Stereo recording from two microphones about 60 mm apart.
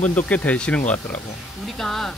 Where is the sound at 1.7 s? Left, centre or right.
Centre.